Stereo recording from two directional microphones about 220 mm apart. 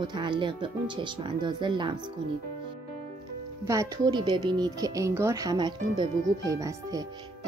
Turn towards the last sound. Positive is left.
turn(degrees=-15)  # may be behind; listen again after turning